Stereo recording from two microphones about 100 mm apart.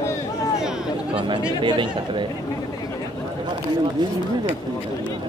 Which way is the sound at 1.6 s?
55° right (ahead or behind).